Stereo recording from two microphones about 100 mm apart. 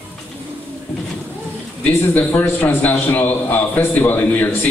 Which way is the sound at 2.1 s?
15° left (ahead or behind).